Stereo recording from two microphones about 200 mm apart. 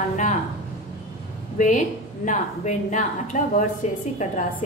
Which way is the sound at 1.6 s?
35° left (ahead or behind).